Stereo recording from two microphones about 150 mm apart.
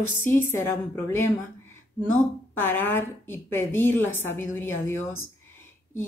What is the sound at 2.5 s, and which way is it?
A woman's voice, 15° left (ahead or behind).